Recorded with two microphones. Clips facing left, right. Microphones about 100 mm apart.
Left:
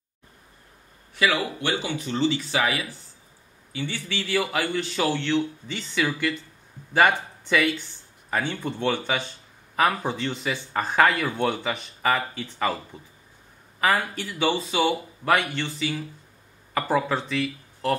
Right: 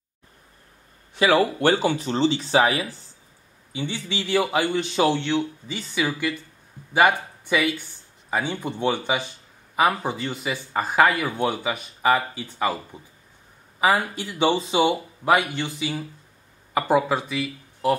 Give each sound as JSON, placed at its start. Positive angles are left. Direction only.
{"t": 1.2, "sound": "speech", "side_deg": -40}
{"t": 3.7, "sound": "speech", "side_deg": -20}
{"t": 13.7, "sound": "speech", "side_deg": -15}